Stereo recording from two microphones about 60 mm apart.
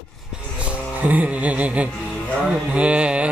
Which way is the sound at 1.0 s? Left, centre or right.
Right.